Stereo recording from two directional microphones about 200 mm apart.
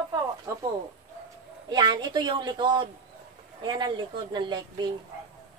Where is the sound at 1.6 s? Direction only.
20° right (ahead or behind).